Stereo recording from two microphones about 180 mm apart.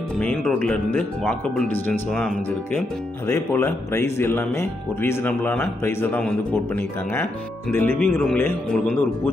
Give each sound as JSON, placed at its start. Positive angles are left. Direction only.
{"t": 0.2, "sound": "speech", "side_deg": 5}
{"t": 7.7, "sound": "speech", "side_deg": 10}